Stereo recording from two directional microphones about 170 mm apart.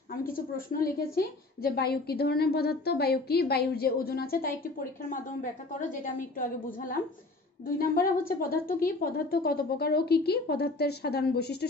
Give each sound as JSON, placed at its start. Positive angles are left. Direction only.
{"t": 0.1, "sound": "a woman's voice", "side_deg": 55}